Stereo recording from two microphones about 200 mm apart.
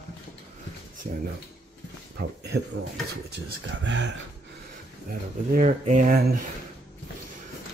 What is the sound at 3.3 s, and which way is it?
Speech, 60° right (ahead or behind).